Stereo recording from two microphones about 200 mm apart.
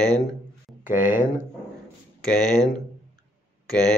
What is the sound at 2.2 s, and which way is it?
Speech, 5° left (ahead or behind).